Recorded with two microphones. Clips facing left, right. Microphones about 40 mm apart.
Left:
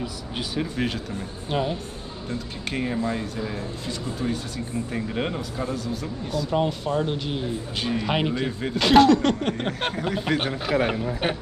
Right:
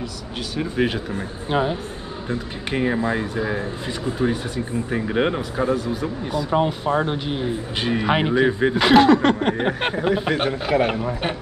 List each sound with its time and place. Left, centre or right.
0.6 s speech: centre
8.7 s speech: centre
10.9 s speech: right